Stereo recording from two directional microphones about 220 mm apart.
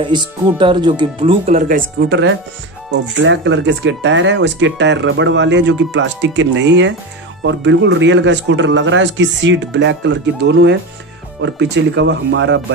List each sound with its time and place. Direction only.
0.0 s speech: 20° right (ahead or behind); by 12.6 s 55° right (ahead or behind)